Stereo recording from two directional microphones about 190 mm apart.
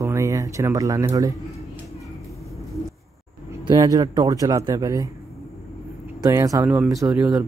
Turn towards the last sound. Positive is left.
turn(degrees=-10)  # may be behind; listen again after turning